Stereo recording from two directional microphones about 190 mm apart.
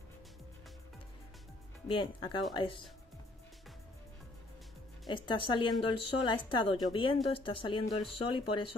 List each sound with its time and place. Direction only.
1.9 s speech: 25° left (ahead or behind)
5.0 s speech: 25° left (ahead or behind)